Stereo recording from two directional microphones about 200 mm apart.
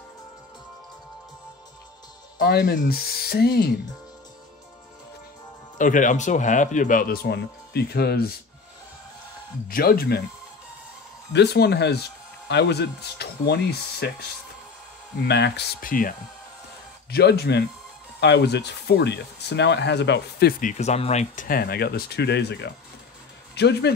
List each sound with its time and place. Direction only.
2.3 s speech: 50° left (ahead or behind)
5.8 s speech: 40° left (ahead or behind)
9.7 s speech: 50° left (ahead or behind)
11.3 s speech: 55° left (ahead or behind)
17.1 s speech: 55° left (ahead or behind)
20.7 s speech: 35° left (ahead or behind); by 23.9 s 55° left (ahead or behind)